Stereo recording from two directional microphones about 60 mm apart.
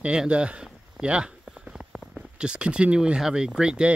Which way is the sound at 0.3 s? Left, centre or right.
Centre.